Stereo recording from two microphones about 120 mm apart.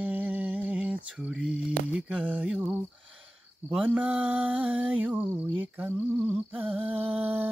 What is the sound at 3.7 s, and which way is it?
Mantra, 10° right (ahead or behind).